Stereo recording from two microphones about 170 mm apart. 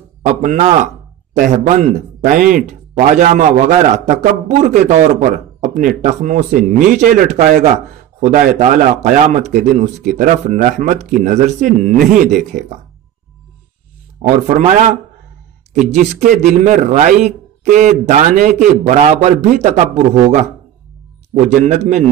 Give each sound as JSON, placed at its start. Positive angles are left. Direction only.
{"t": 0.2, "sound": "a man's voice", "side_deg": -45}
{"t": 14.2, "sound": "a man's voice", "side_deg": -40}
{"t": 21.6, "sound": "a man's voice", "side_deg": -40}